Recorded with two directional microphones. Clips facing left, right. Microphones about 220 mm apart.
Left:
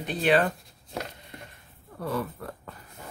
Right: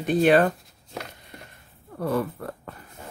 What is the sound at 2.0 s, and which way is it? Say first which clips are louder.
Speech: right 5 dB; 50° right (ahead or behind).